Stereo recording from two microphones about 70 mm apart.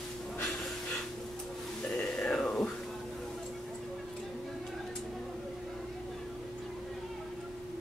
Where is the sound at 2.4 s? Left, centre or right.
Centre.